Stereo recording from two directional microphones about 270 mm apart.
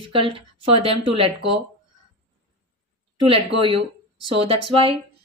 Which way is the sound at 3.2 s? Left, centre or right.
Centre.